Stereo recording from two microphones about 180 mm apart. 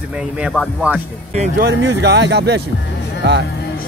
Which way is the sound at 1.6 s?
85° right.